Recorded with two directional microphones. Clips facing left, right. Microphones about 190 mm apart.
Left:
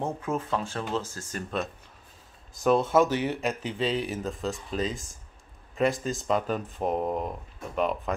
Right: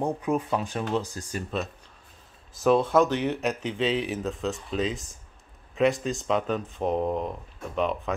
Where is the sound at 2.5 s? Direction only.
Centre (ahead or behind).